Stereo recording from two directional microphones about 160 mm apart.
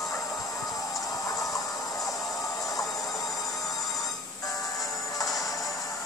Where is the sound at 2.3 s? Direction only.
20° left (ahead or behind).